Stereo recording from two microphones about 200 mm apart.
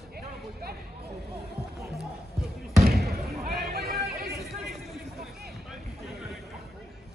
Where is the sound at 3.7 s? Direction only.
50° right (ahead or behind).